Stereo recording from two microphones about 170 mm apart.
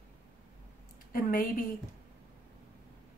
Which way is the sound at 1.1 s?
55° left (ahead or behind).